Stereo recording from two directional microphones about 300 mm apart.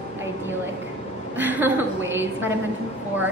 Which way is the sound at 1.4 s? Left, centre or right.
Centre.